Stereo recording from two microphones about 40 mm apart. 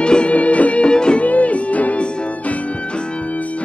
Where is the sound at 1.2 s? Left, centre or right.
Left.